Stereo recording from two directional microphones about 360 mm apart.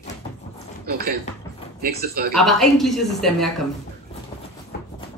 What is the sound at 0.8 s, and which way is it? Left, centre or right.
Speech, right.